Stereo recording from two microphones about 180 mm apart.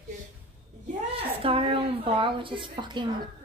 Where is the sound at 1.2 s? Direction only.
30° right (ahead or behind).